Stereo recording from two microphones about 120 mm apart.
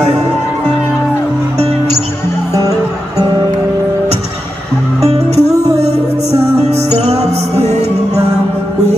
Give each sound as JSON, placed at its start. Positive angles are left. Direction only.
{"t": 5.0, "sound": "music", "side_deg": -55}
{"t": 6.7, "sound": "music", "side_deg": -60}